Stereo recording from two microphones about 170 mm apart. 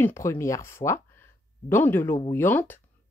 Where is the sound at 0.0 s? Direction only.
15° left (ahead or behind).